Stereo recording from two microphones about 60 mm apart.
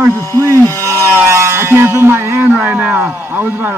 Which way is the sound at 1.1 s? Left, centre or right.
Right.